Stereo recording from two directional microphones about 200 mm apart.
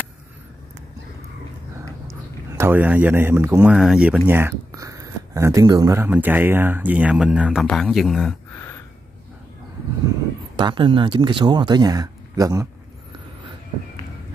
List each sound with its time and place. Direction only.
2.5 s speech: 10° right (ahead or behind)
10.6 s speech: 25° right (ahead or behind)